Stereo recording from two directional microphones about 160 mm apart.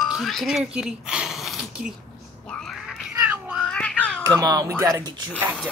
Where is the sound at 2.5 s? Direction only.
5° left (ahead or behind).